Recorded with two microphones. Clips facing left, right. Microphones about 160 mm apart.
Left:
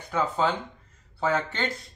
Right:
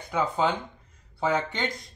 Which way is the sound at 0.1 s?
10° right (ahead or behind).